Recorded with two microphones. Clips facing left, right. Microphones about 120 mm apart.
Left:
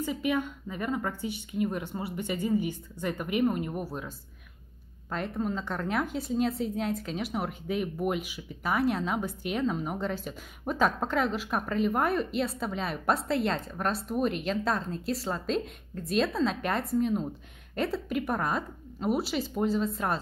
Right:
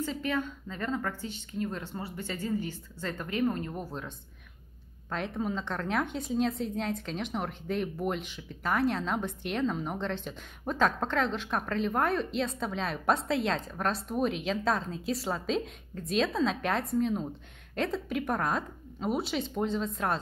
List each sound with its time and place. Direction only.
0.0 s speech: 15° left (ahead or behind)
5.1 s a woman's voice: centre (ahead or behind)